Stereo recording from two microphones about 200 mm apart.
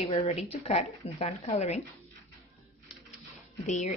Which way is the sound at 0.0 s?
25° left (ahead or behind).